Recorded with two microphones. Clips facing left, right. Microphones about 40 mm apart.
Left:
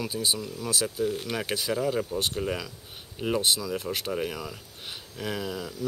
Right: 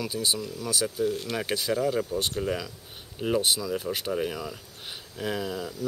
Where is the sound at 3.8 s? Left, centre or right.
Centre.